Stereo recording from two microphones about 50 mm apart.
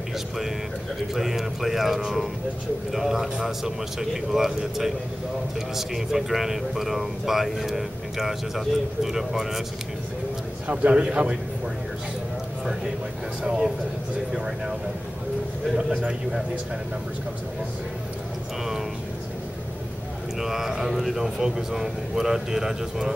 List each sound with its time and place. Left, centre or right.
1.1 s speech: centre
10.7 s a man's voice: right
15.7 s speech: centre
20.3 s speech: centre